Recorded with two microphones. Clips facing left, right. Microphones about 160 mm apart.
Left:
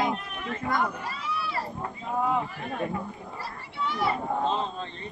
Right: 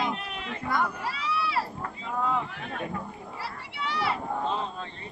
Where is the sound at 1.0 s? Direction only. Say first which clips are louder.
Right 2 dB; 75° right (ahead or behind).